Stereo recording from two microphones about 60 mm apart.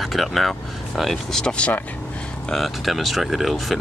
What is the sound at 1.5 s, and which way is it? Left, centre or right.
Speech, centre.